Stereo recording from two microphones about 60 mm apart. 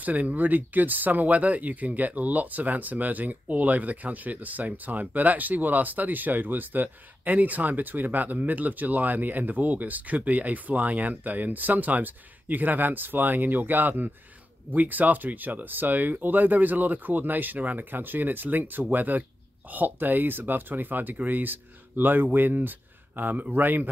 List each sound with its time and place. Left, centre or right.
0.0 s speech: right